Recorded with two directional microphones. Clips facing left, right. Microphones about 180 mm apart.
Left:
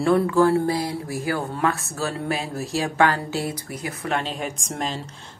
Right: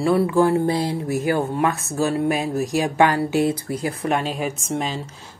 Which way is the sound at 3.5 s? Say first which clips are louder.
Right 7 dB; 30° right (ahead or behind).